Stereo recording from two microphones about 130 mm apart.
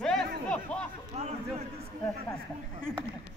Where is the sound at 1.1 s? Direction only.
60° right (ahead or behind).